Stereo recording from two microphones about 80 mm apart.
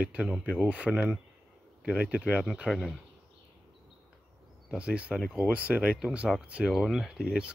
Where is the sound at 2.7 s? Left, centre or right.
Centre.